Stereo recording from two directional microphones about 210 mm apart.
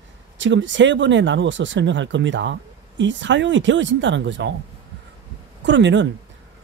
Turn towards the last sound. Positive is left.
turn(degrees=-60)  # may be behind; listen again after turning